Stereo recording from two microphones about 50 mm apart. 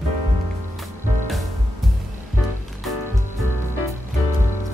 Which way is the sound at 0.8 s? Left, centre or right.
Centre.